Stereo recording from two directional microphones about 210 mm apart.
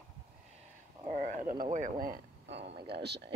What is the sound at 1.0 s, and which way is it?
Speech, 35° right (ahead or behind).